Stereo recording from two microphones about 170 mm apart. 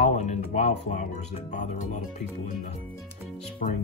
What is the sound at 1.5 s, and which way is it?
Speech, 50° left (ahead or behind).